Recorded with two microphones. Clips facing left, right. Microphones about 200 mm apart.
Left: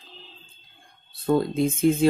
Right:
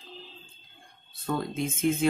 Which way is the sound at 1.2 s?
35° left (ahead or behind).